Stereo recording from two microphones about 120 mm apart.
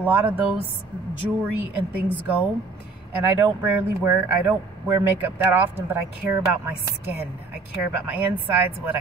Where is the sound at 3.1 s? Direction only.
20° right (ahead or behind).